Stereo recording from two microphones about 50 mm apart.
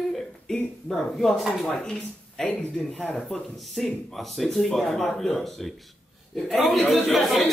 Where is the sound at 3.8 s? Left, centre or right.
Centre.